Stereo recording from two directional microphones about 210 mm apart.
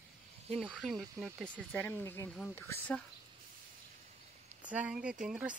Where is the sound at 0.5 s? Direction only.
5° right (ahead or behind).